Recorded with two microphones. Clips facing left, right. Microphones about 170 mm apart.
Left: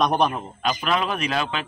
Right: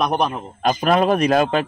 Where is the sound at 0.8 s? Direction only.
45° right (ahead or behind).